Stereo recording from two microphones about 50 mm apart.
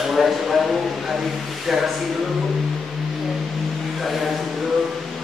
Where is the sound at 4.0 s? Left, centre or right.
Centre.